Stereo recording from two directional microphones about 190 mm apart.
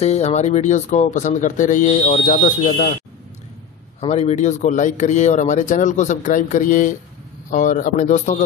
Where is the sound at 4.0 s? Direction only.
35° left (ahead or behind).